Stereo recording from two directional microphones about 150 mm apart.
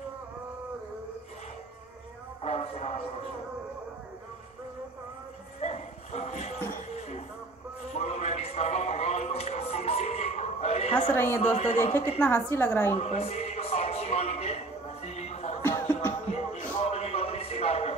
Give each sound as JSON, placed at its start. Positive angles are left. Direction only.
{"t": 2.4, "sound": "a sound", "side_deg": 45}
{"t": 5.6, "sound": "dog", "side_deg": 45}
{"t": 7.9, "sound": "a sound", "side_deg": 45}
{"t": 11.1, "sound": "a woman's voice", "side_deg": 15}
{"t": 11.4, "sound": "a man's voice", "side_deg": 45}
{"t": 12.2, "sound": "a woman's voice", "side_deg": 15}
{"t": 12.9, "sound": "music", "side_deg": 45}
{"t": 15.6, "sound": "music", "side_deg": 20}
{"t": 16.3, "sound": "a sound", "side_deg": 45}